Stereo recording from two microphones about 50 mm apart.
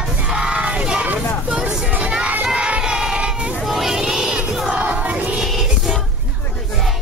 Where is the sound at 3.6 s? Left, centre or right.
Centre.